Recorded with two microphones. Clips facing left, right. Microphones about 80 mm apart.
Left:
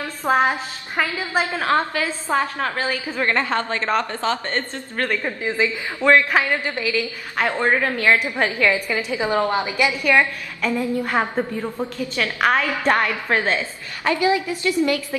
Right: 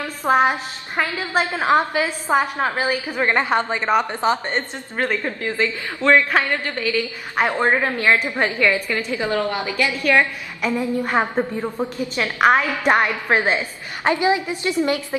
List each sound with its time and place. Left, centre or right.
0.2 s a woman's voice: centre
5.2 s a woman's voice: centre
7.3 s a woman's voice: centre
8.5 s a woman's voice: centre
10.6 s a woman's voice: centre